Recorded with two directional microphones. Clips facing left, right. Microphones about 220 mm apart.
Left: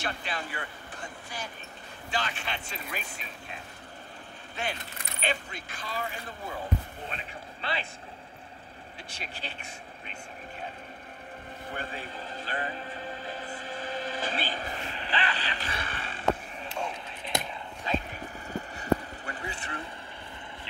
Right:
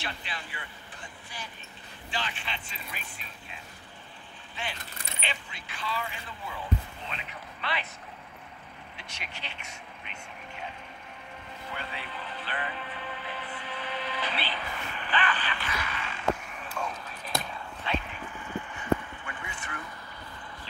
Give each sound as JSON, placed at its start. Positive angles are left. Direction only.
{"t": 0.0, "sound": "speech", "side_deg": 45}
{"t": 5.2, "sound": "speech", "side_deg": 45}
{"t": 7.6, "sound": "speech", "side_deg": 30}
{"t": 9.1, "sound": "speech", "side_deg": 35}
{"t": 11.7, "sound": "music", "side_deg": 45}
{"t": 17.8, "sound": "vehicle", "side_deg": 40}